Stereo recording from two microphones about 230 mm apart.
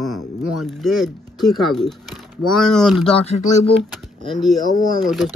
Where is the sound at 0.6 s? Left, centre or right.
Centre.